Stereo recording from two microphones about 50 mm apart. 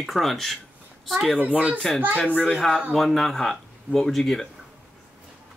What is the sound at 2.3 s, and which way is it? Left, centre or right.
Speech, left.